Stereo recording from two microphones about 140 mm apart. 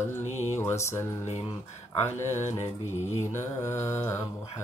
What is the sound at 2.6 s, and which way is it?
Mantra, 55° left (ahead or behind).